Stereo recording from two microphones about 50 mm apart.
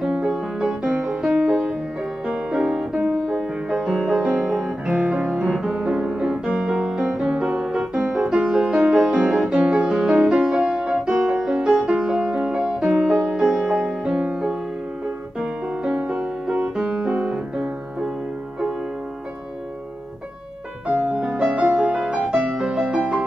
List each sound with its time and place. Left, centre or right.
0.0 s music: centre
4.2 s music: centre
9.7 s music: right
15.8 s music: right
17.3 s music: centre
21.5 s music: right
21.8 s music: centre
22.1 s music: right